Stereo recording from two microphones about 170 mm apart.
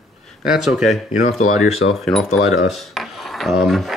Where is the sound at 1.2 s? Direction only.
45° left (ahead or behind).